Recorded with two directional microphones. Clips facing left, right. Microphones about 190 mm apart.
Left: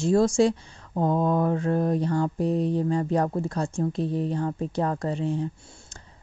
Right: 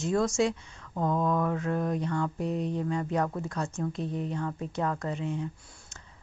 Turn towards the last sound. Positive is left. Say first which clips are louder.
# left 5 dB
turn(degrees=35)  # may be behind; listen again after turning